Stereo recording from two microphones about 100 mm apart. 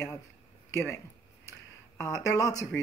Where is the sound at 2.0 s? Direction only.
30° left (ahead or behind).